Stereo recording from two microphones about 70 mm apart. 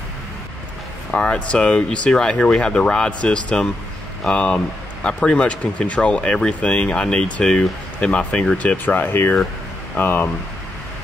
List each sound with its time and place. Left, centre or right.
1.1 s speech: centre
8.8 s speech: left